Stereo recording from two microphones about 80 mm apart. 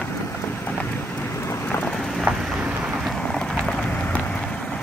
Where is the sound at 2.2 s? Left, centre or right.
Centre.